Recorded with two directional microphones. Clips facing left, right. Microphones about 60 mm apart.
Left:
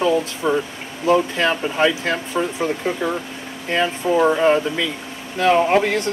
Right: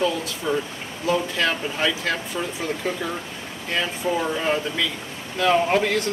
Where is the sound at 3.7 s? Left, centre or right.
Left.